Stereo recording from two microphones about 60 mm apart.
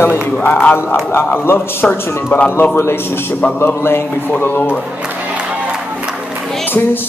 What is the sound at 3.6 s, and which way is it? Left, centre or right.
A man's voice, left.